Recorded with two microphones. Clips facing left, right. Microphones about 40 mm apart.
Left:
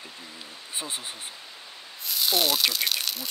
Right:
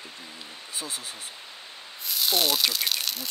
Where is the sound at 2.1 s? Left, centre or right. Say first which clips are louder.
Even; centre.